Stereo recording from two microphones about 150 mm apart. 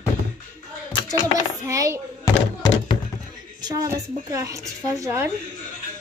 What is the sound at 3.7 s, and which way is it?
A woman's voice, 20° right (ahead or behind).